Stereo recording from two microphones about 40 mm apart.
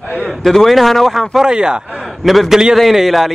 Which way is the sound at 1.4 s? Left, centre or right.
Centre.